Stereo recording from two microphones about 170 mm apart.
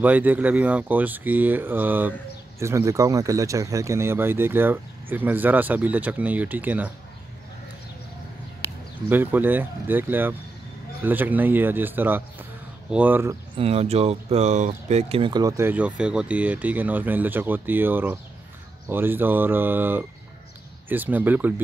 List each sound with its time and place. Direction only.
0.0 s speech: 10° right (ahead or behind)
9.1 s speech: 10° right (ahead or behind)
13.6 s speech: 35° right (ahead or behind); by 21.5 s 10° right (ahead or behind)